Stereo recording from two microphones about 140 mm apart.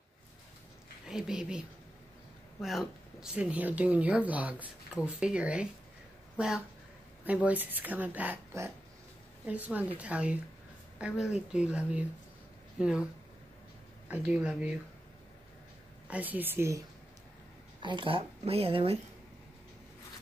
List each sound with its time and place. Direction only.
1.0 s speech: 5° right (ahead or behind)
2.6 s speech: centre (ahead or behind)
14.1 s speech: 10° right (ahead or behind)
16.1 s speech: 10° right (ahead or behind)
17.8 s speech: 35° right (ahead or behind)